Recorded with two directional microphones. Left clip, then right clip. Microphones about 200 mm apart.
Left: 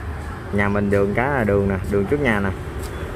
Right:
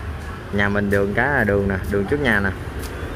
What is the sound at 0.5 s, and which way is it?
Speech, 5° left (ahead or behind).